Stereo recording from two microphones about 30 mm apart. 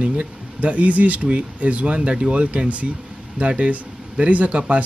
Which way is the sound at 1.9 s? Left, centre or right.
Right.